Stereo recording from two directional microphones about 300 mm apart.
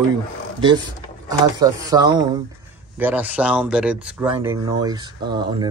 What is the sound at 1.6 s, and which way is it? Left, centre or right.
Speech, centre.